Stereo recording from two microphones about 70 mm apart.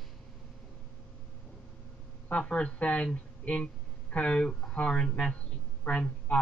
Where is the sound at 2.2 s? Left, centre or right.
Centre.